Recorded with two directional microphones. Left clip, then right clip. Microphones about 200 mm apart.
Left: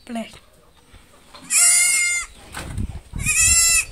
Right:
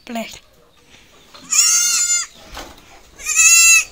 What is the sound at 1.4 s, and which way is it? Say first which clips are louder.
Goat: right 4 dB; 20° left (ahead or behind).